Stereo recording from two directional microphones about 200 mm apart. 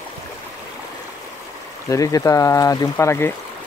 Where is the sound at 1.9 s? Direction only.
15° left (ahead or behind).